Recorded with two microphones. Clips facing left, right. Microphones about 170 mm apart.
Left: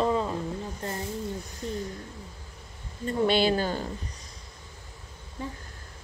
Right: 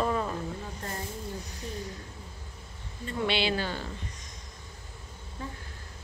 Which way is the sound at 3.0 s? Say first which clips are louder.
Left 6 dB; 45° left (ahead or behind).